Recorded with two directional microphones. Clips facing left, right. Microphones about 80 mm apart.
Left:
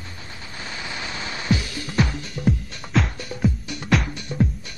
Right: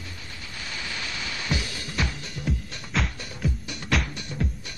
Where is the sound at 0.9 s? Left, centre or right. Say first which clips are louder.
Left 3 dB; left.